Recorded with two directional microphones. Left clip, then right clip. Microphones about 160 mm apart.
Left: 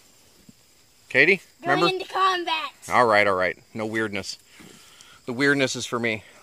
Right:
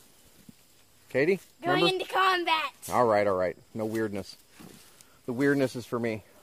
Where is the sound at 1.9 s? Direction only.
50° right (ahead or behind).